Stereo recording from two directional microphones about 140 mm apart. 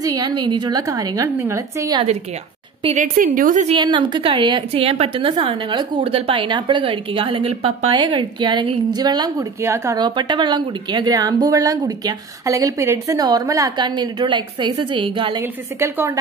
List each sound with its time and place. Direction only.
0.0 s a woman's voice: 30° right (ahead or behind)
3.0 s a woman's voice: 70° right (ahead or behind)
3.6 s a woman's voice: 35° right (ahead or behind); by 9.9 s 20° right (ahead or behind)
9.9 s a woman's voice: 30° right (ahead or behind)
15.4 s a woman's voice: 15° right (ahead or behind)